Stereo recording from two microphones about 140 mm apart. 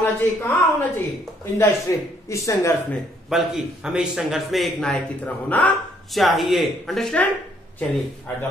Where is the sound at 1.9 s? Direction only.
20° left (ahead or behind).